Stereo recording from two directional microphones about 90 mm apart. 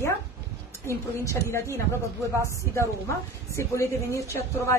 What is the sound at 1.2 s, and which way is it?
Speech, 35° left (ahead or behind).